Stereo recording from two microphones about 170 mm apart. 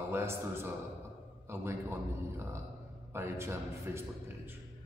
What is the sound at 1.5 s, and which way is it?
A man's voice, 15° right (ahead or behind).